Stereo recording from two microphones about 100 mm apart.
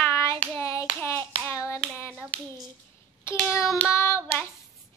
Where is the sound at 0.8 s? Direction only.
20° left (ahead or behind).